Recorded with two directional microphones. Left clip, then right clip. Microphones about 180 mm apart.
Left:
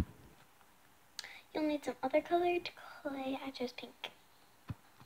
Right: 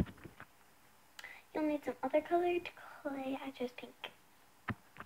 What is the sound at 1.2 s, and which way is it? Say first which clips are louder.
Speech: even; centre (ahead or behind).